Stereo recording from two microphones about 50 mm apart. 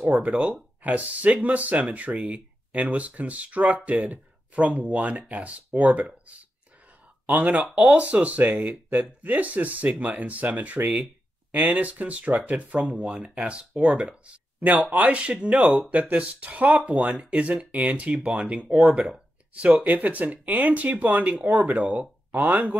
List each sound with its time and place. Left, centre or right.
0.0 s speech: right
7.7 s speech: right
12.9 s speech: centre
14.6 s speech: right